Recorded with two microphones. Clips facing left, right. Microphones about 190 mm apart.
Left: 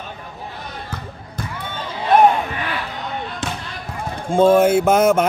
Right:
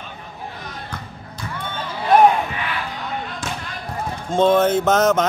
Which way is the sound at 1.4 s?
55° left (ahead or behind).